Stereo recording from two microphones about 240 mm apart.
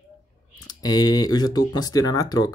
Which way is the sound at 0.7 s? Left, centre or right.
Centre.